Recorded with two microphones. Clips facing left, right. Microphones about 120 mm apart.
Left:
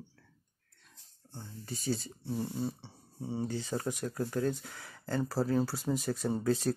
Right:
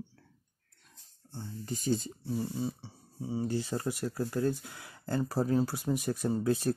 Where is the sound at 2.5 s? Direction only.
5° right (ahead or behind).